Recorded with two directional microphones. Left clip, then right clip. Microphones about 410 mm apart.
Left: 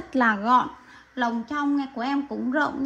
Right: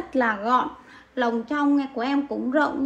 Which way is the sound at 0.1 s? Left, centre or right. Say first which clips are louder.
Left 2 dB; centre.